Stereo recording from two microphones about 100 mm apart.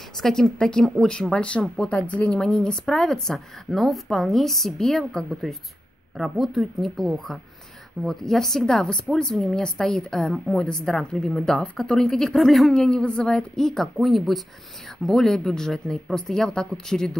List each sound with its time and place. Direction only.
0.2 s speech: 5° left (ahead or behind)